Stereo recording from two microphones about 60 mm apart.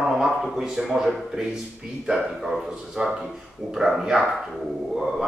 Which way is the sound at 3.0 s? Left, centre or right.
Centre.